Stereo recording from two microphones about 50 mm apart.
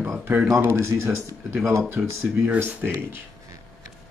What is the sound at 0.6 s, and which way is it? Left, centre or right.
Speech, right.